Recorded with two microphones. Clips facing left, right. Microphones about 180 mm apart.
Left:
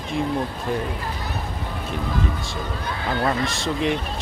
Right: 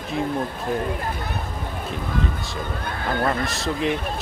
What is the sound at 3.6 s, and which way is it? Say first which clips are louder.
Speech: even; centre (ahead or behind).